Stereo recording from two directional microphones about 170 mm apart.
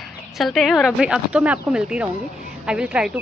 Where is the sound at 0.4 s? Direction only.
Centre (ahead or behind).